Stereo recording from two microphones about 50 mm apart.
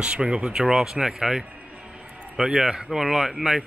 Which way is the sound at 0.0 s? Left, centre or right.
Centre.